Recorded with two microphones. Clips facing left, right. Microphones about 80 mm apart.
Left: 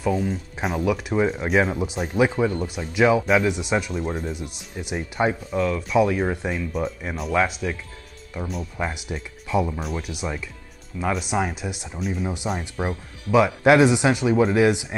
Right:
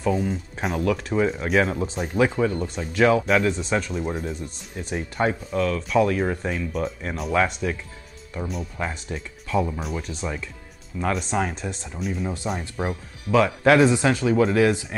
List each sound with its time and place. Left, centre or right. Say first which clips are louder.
0.2 s speech: even; centre
0.7 s speech: even; centre
4.0 s speech: even; centre
4.4 s speech: left 1 dB; centre
12.8 s speech: even; centre